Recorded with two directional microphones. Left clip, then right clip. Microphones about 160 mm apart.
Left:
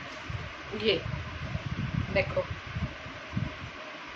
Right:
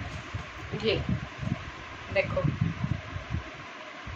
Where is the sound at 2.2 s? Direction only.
10° left (ahead or behind).